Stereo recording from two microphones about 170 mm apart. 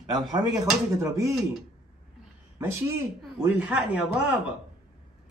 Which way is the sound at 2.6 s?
10° right (ahead or behind).